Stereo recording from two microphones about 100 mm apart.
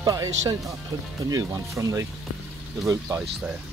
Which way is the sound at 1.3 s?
35° right (ahead or behind).